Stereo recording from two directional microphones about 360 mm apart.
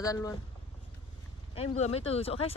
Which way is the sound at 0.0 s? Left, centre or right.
Centre.